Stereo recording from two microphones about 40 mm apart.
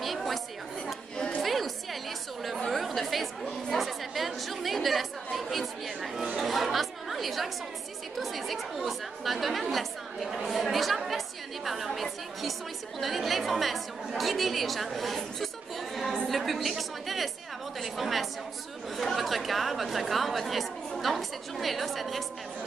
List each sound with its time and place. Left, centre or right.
0.0 s chatter: centre
1.1 s a sound: left
1.4 s chatter: centre
3.7 s speech: centre
6.3 s chatter: centre
8.2 s a woman's voice: centre